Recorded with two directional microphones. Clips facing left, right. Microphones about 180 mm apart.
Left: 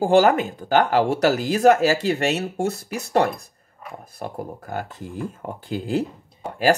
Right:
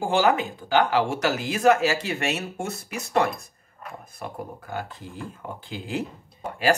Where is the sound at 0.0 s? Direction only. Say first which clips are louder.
Left 5 dB; 40° left (ahead or behind).